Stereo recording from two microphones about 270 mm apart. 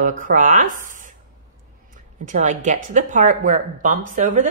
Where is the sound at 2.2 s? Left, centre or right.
Right.